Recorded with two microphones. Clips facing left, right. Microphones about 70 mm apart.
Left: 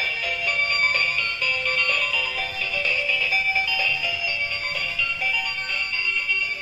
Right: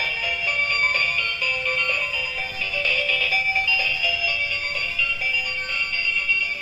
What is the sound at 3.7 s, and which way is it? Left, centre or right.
Music, left.